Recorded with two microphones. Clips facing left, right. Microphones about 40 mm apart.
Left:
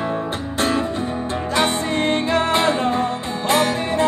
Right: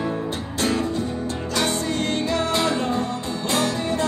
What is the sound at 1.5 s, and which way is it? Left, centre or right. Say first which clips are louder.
Music: left 4 dB; left.